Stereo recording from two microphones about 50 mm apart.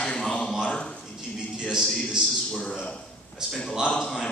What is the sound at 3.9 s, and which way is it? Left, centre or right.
Speech, centre.